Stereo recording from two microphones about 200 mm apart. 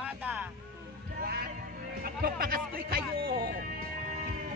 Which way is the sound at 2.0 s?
45° right (ahead or behind).